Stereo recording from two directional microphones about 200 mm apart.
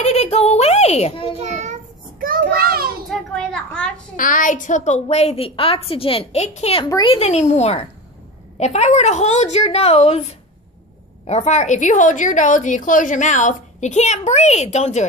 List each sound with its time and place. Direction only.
0.0 s a sound: 35° left (ahead or behind)
1.4 s child singing: 35° right (ahead or behind)
3.1 s a child's voice: 5° left (ahead or behind)
4.2 s a woman's voice: 40° left (ahead or behind)
6.9 s a child's voice: 20° left (ahead or behind)
7.2 s a woman's voice: 35° left (ahead or behind)